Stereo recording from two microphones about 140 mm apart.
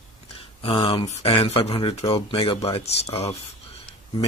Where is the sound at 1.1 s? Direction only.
45° left (ahead or behind).